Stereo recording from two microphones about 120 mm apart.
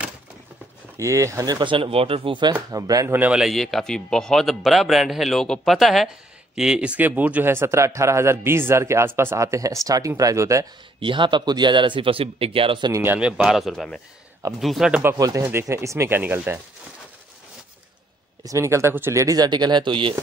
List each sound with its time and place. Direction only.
0.9 s speech: 25° right (ahead or behind); by 2.5 s 45° right (ahead or behind)
2.7 s speech: 30° right (ahead or behind)
3.2 s speech: 5° right (ahead or behind); by 10.7 s 25° right (ahead or behind)
11.0 s speech: 40° right (ahead or behind)
12.9 s speech: 15° right (ahead or behind)
13.4 s speech: 5° right (ahead or behind)
15.1 s speech: 25° right (ahead or behind)
18.4 s speech: 25° right (ahead or behind); by 20.2 s 45° right (ahead or behind)